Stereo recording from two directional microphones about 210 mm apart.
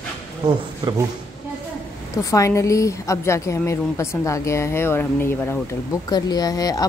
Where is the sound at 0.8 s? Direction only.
20° right (ahead or behind).